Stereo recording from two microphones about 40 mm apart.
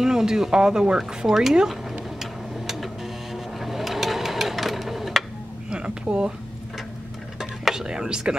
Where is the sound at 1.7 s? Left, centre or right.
Centre.